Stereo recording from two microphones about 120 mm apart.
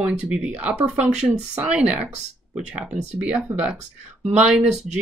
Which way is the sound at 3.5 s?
25° right (ahead or behind).